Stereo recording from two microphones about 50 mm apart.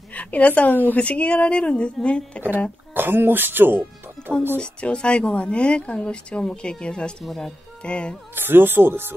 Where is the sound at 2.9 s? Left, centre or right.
Right.